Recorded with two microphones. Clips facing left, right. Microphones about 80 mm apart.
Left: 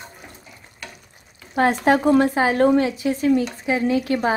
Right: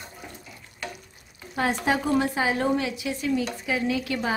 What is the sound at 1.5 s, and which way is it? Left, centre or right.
A woman's voice, left.